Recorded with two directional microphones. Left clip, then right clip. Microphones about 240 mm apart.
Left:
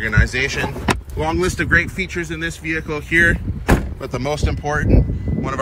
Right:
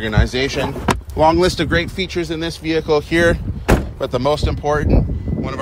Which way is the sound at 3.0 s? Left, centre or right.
Right.